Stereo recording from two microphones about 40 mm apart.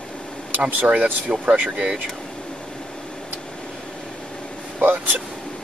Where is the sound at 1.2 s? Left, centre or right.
Right.